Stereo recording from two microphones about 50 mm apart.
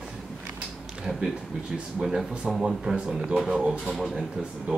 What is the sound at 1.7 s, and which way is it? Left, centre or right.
Speech, centre.